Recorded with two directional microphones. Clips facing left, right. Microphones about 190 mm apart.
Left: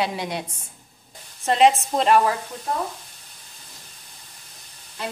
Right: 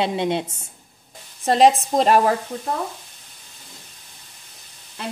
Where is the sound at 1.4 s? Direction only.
35° right (ahead or behind).